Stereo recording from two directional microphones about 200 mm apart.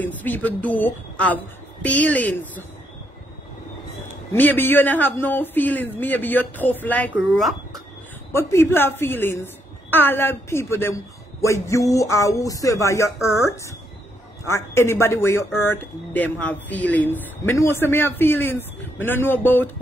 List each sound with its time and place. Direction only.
0.0 s speech: 10° left (ahead or behind)
4.3 s speech: 10° left (ahead or behind)
8.3 s a woman's voice: 15° left (ahead or behind)